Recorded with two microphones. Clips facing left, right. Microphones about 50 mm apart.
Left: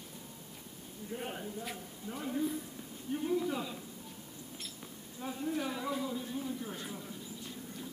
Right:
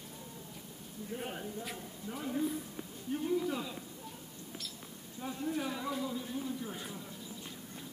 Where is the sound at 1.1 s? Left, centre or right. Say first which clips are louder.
Even; centre.